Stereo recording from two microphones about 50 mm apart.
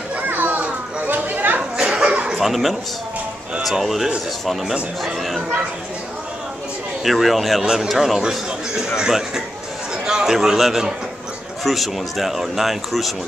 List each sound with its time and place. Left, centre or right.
0.3 s children playing: right
1.8 s a sound: centre
2.3 s speech: centre
7.1 s speech: centre
7.6 s a man's voice: centre
7.9 s a man's voice: centre